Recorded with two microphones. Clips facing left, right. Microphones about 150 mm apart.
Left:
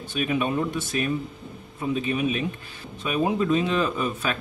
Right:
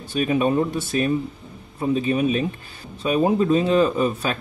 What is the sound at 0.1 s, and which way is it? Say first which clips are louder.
Speech: right 5 dB; 35° right (ahead or behind).